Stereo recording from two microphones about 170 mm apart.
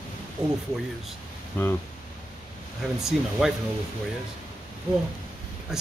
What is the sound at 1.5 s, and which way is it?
Speech, 10° left (ahead or behind).